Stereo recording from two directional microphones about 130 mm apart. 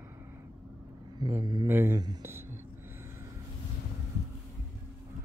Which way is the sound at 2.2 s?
20° right (ahead or behind).